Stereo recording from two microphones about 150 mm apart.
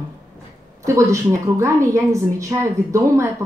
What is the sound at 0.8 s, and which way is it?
A woman's voice, 20° right (ahead or behind).